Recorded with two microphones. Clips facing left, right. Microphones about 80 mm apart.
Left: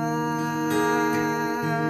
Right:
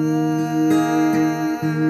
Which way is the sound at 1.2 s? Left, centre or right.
Left.